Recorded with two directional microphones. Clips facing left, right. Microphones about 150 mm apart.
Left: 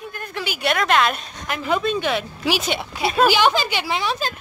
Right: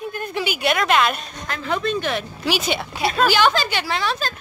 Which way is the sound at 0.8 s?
5° right (ahead or behind).